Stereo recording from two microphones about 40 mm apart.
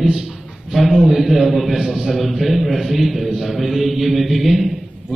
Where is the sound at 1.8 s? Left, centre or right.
Right.